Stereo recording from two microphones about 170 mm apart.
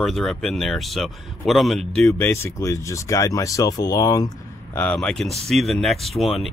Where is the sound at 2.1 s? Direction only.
15° left (ahead or behind).